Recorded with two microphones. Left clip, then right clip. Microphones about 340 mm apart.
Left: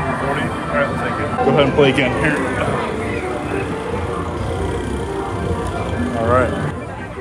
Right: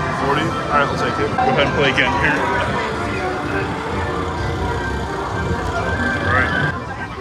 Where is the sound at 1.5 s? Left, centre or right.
Centre.